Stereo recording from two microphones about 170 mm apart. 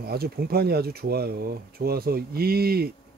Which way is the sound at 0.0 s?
65° right (ahead or behind).